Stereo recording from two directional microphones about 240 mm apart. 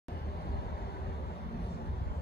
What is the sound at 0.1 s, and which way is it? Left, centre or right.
Vehicle, left.